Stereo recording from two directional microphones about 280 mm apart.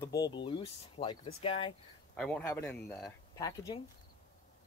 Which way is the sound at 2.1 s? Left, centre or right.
Centre.